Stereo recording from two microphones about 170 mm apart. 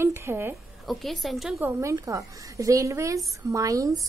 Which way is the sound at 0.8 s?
Centre (ahead or behind).